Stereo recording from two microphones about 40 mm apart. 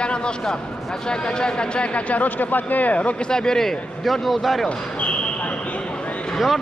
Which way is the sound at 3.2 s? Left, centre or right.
Centre.